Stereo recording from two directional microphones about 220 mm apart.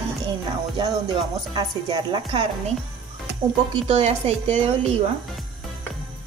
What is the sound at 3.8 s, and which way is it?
A woman's voice, 25° right (ahead or behind).